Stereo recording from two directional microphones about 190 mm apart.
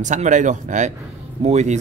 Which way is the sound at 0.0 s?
40° right (ahead or behind).